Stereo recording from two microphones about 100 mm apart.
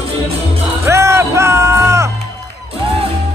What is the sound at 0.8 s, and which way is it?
Music, 30° right (ahead or behind).